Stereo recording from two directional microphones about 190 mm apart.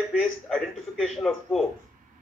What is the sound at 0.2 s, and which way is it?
A man's voice, centre (ahead or behind).